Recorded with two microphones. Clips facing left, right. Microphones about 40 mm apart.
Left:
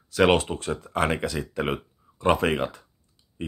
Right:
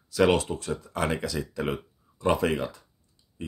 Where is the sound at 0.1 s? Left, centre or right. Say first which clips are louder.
Left 2 dB; left.